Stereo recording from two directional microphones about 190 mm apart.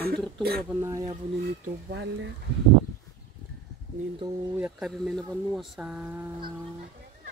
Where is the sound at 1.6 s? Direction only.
55° right (ahead or behind).